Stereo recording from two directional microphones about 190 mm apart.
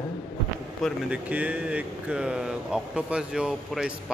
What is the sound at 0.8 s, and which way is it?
Speech, 5° right (ahead or behind).